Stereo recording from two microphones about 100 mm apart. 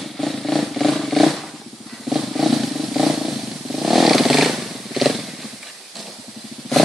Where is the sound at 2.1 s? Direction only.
Centre (ahead or behind).